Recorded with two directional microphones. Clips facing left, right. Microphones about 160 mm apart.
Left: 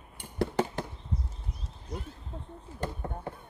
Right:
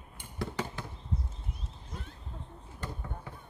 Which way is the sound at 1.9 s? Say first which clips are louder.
Left 7 dB; 35° left (ahead or behind).